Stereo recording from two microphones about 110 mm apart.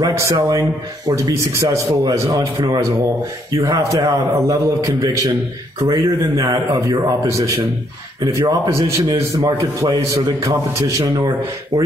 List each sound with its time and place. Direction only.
0.0 s a man's voice: 30° right (ahead or behind)